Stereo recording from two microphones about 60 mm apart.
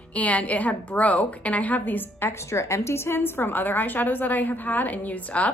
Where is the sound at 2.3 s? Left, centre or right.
Left.